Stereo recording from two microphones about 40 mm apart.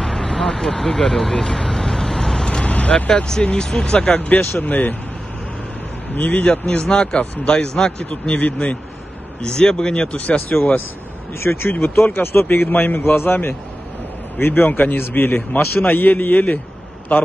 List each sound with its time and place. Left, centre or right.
0.0 s speech: centre; by 3.1 s left
3.1 s a man's voice: centre
4.3 s a man's voice: left
6.1 s a man's voice: left
6.4 s a man's voice: left
8.4 s a man's voice: left
9.4 s a man's voice: centre
10.1 s speech: left
11.3 s speech: left
13.0 s speech: left
14.7 s a man's voice: left
15.0 s a man's voice: left
15.9 s a man's voice: left
17.1 s speech: left